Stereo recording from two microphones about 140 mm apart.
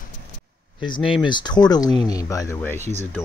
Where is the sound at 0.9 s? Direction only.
35° left (ahead or behind).